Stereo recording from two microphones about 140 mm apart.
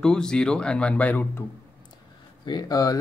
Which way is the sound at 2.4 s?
30° left (ahead or behind).